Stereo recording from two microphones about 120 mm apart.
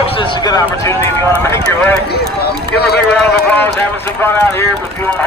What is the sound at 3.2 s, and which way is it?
Speech, 15° left (ahead or behind).